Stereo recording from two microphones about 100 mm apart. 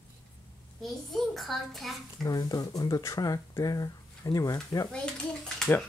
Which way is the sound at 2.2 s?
40° left (ahead or behind).